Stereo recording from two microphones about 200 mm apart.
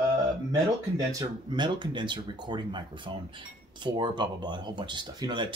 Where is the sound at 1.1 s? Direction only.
20° right (ahead or behind).